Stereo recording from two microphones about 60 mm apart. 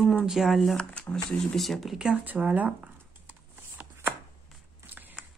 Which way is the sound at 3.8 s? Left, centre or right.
Right.